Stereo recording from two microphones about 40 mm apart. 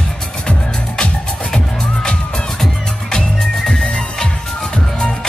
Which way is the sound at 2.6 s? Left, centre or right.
Centre.